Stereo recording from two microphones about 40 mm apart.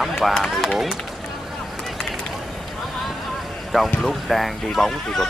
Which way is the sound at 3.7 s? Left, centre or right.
Centre.